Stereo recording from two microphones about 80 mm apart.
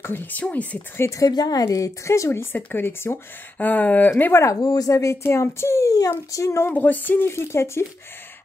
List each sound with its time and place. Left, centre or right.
0.0 s speech: left
1.0 s a woman's voice: left
1.3 s a woman's voice: left
5.9 s a woman's voice: left
6.7 s speech: left